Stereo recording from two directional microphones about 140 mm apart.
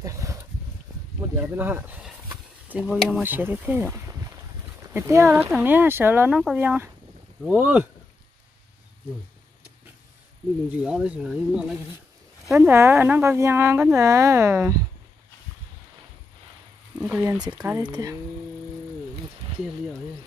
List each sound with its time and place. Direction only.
0.0 s a sound: 25° right (ahead or behind)
1.4 s speech: 15° right (ahead or behind)
10.7 s speech: 5° right (ahead or behind)
17.0 s speech: 15° right (ahead or behind)
17.7 s speech: 25° right (ahead or behind)